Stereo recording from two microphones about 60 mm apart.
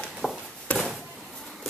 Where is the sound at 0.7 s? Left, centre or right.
Left.